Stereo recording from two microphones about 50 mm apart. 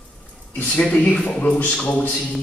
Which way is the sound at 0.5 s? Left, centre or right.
Left.